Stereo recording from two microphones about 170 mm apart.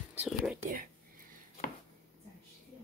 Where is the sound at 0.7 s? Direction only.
55° right (ahead or behind).